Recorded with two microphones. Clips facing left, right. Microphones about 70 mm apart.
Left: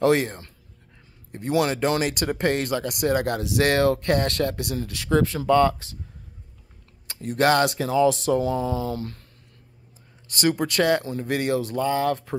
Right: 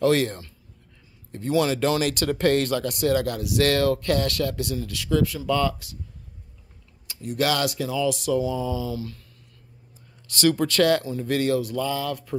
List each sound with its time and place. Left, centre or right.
1.5 s speech: left
2.0 s speech: left
7.1 s speech: left
10.5 s speech: centre
11.5 s speech: left